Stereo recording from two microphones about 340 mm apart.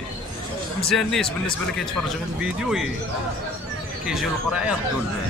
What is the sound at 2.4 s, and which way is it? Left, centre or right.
Speech, centre.